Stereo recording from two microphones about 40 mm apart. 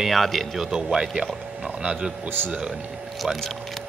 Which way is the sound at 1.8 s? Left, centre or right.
Right.